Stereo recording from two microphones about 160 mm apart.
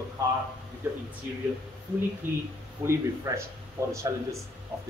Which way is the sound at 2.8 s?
15° right (ahead or behind).